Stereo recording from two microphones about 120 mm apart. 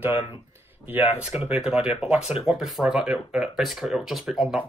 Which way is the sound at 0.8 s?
15° right (ahead or behind).